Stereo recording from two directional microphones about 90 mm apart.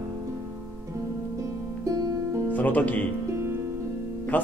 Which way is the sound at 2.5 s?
20° left (ahead or behind).